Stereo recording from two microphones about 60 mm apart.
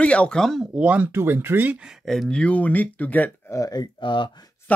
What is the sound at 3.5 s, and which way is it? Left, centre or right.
Speech, left.